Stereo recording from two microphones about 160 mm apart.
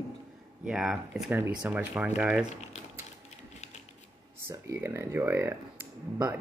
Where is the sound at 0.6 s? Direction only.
5° right (ahead or behind).